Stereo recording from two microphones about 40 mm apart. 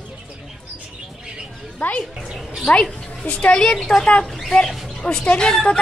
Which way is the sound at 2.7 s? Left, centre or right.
Left.